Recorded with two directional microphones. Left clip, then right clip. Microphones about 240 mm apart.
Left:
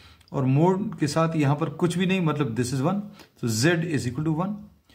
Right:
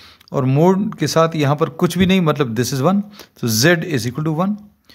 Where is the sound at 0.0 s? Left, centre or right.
Right.